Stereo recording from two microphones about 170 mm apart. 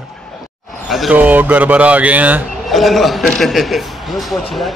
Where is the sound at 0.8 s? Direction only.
Centre (ahead or behind).